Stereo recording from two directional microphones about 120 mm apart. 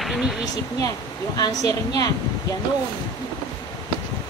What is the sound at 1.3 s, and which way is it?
Speech, 35° left (ahead or behind).